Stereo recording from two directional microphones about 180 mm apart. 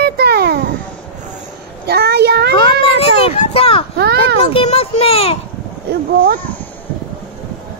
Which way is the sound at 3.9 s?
65° right (ahead or behind).